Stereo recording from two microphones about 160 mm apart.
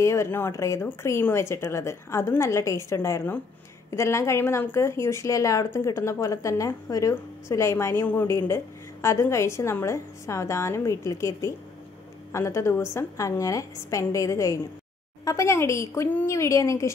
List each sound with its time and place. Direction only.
0.0 s a woman's voice: 15° left (ahead or behind)